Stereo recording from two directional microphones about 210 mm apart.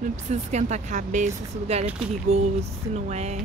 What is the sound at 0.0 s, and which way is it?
Speech, 35° right (ahead or behind).